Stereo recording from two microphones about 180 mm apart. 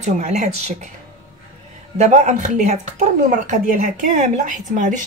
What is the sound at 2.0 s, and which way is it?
A woman's voice, 40° right (ahead or behind).